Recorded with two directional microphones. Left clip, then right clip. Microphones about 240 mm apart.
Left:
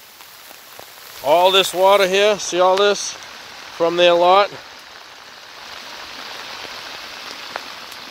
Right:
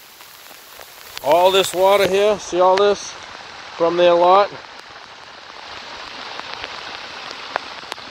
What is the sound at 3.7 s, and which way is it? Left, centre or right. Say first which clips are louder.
Speech: even; left.